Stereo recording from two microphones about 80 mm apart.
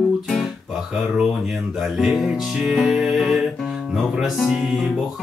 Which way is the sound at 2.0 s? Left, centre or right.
Centre.